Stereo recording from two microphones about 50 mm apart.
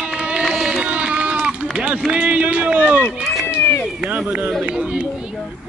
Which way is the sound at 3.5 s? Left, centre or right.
Left.